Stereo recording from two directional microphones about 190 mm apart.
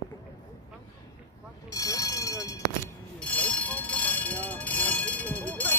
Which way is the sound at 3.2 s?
5° left (ahead or behind).